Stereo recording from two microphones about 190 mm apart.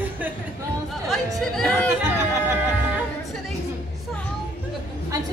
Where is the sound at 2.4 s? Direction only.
10° right (ahead or behind).